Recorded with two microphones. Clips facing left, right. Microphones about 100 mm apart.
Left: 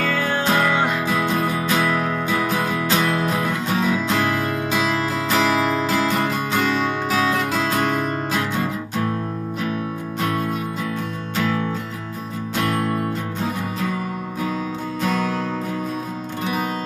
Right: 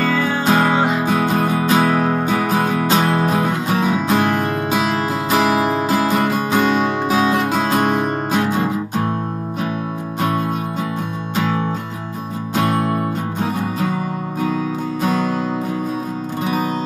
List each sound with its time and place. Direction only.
0.0 s music: centre (ahead or behind)
0.5 s music: 30° right (ahead or behind)
11.3 s music: 25° right (ahead or behind)